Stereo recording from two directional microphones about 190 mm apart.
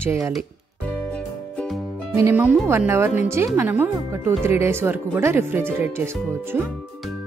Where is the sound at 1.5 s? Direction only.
Centre (ahead or behind).